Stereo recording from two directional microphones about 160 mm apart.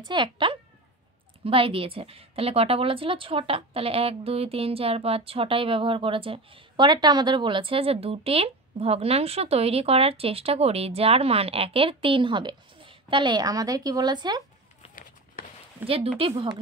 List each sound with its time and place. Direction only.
0.0 s speech: 30° right (ahead or behind)
15.8 s speech: 10° right (ahead or behind)
16.2 s speech: 35° right (ahead or behind)